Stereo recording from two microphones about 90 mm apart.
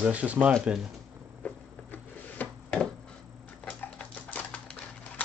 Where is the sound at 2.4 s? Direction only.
20° left (ahead or behind).